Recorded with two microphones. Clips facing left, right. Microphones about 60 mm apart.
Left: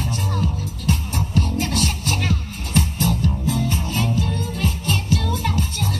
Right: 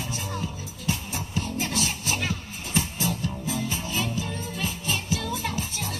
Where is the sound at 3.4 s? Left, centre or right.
Centre.